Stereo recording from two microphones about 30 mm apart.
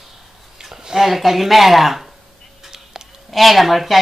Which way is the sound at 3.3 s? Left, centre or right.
Centre.